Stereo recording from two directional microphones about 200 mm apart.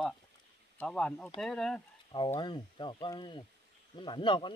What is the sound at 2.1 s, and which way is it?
Speech, 25° left (ahead or behind).